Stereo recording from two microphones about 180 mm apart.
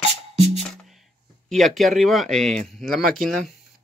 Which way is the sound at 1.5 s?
Centre (ahead or behind).